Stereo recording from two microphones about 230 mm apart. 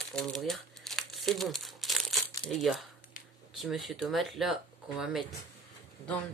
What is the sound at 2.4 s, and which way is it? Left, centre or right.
Speech, left.